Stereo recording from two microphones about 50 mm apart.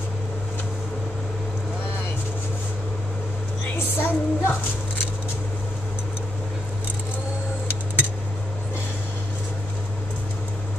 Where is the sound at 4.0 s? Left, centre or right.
Left.